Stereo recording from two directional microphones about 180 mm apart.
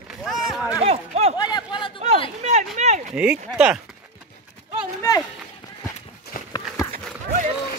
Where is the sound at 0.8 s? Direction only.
35° right (ahead or behind).